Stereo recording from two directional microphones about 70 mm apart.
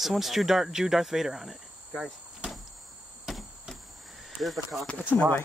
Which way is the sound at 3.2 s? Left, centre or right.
Centre.